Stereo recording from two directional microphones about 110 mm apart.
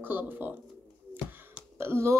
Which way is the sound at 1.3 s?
20° right (ahead or behind).